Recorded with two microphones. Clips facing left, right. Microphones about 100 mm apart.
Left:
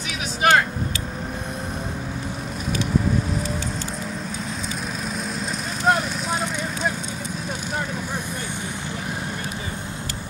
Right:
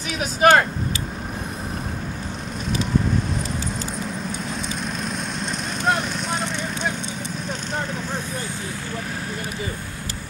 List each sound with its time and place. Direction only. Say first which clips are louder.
0.4 s vehicle: right 3 dB; 45° right (ahead or behind)
5.9 s vehicle: left 2 dB; 5° left (ahead or behind)